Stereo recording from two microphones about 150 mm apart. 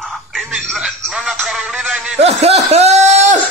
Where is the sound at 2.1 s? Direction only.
45° right (ahead or behind).